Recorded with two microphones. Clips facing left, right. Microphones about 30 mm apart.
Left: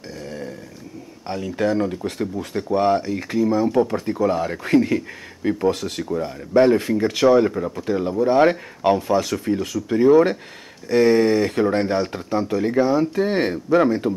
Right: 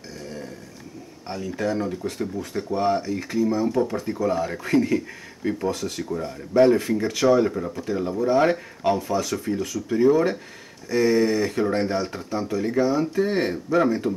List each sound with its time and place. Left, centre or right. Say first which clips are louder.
1.2 s speech: left 4 dB; left
5.7 s speech: left 5 dB; left
6.0 s speech: left 7 dB; centre
6.5 s speech: left 2 dB; left
7.0 s speech: left 4 dB; left